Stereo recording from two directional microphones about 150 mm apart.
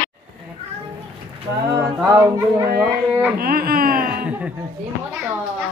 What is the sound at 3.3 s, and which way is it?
Speech, 85° right.